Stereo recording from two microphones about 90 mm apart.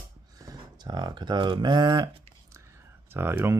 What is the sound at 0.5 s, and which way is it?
Speech, 50° right (ahead or behind).